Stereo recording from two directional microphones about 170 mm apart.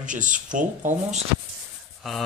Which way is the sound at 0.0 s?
50° right (ahead or behind).